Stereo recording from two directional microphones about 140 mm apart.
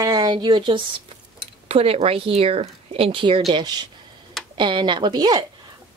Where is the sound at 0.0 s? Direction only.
25° right (ahead or behind).